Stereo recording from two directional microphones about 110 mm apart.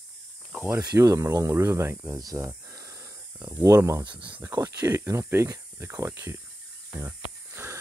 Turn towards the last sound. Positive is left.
turn(degrees=-20)  # may be behind; listen again after turning